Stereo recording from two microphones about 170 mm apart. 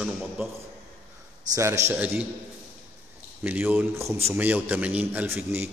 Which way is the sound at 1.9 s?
10° right (ahead or behind).